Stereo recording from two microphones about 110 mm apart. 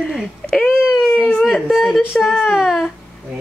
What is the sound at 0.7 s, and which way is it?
Baby cry, 5° right (ahead or behind).